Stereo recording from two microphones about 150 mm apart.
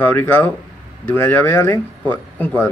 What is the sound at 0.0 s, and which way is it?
Speech, 10° left (ahead or behind).